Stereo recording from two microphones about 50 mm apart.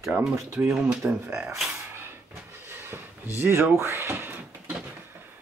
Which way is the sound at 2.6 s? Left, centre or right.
Right.